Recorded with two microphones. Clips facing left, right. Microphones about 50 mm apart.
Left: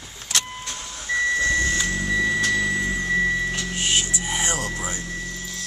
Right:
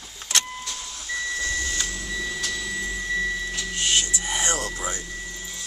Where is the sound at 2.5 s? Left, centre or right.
Left.